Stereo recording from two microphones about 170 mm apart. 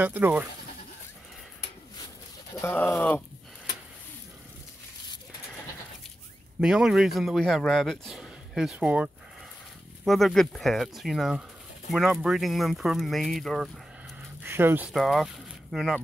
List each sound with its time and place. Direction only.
0.0 s speech: 10° right (ahead or behind)
2.5 s speech: 15° left (ahead or behind)
6.6 s speech: 5° right (ahead or behind)
14.4 s speech: 15° right (ahead or behind)